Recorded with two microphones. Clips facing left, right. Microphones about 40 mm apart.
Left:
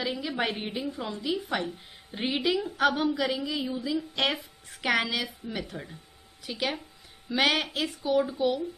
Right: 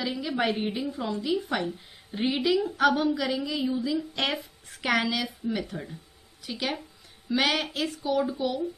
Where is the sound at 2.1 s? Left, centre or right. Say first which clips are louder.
Right 3 dB; centre.